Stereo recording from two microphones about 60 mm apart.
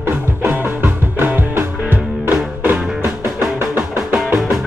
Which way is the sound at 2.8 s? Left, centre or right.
Centre.